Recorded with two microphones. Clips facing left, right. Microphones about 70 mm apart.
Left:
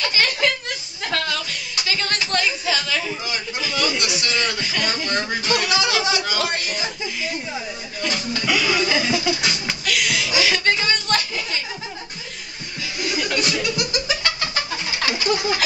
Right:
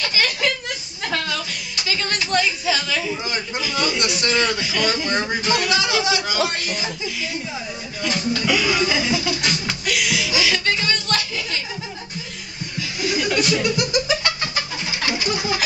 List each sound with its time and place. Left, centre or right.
0.1 s a sound: centre
1.0 s music: centre
1.9 s speech: centre
4.0 s speech: right
4.5 s speech: centre
5.0 s speech: centre
8.3 s speech: centre
9.4 s music: centre
9.8 s a sound: centre
10.3 s a sound: centre
13.0 s chuckle: centre
13.4 s music: right
15.1 s a sound: centre